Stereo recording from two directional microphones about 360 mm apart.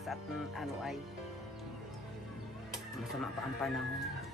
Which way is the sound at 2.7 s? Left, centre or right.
Centre.